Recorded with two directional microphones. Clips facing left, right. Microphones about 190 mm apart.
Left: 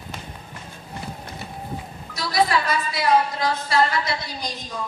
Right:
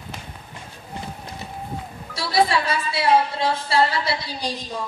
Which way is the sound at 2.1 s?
30° right (ahead or behind).